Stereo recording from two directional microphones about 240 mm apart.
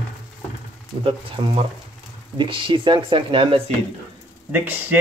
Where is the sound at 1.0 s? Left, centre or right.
Centre.